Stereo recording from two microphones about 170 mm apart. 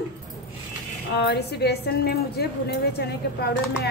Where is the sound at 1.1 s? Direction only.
75° left (ahead or behind).